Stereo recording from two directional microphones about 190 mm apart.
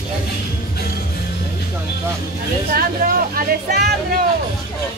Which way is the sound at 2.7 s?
50° right (ahead or behind).